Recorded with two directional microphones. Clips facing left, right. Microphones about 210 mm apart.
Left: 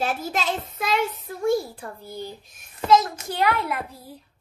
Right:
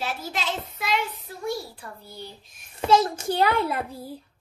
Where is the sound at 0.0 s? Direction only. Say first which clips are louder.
Left 4 dB; 50° left (ahead or behind).